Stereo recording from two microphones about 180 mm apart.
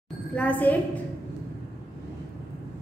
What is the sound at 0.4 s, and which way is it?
Speech, 10° left (ahead or behind).